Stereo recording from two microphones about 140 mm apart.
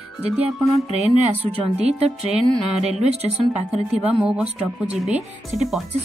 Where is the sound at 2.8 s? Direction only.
50° right (ahead or behind).